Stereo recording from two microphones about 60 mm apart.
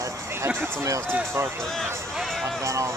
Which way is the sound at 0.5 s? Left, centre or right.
Right.